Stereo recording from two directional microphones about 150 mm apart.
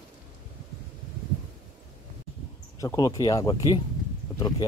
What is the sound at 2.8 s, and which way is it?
Speech, 20° left (ahead or behind).